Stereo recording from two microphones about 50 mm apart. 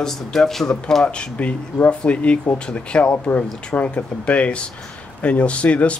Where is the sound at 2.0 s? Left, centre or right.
Left.